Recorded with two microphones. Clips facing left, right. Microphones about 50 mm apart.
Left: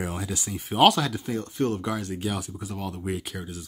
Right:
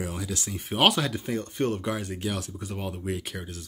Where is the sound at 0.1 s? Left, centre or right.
Left.